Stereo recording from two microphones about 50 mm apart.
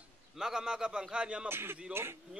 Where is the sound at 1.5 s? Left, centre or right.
Right.